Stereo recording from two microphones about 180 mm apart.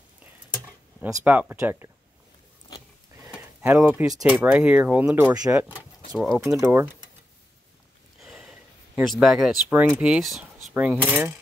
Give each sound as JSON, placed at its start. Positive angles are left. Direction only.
{"t": 1.0, "sound": "speech", "side_deg": -10}
{"t": 3.3, "sound": "a sound", "side_deg": -10}
{"t": 4.2, "sound": "speech", "side_deg": -5}
{"t": 5.3, "sound": "speech", "side_deg": -20}
{"t": 6.1, "sound": "speech", "side_deg": 0}
{"t": 6.4, "sound": "speech", "side_deg": -15}
{"t": 8.2, "sound": "a sound", "side_deg": 0}
{"t": 9.2, "sound": "speech", "side_deg": 0}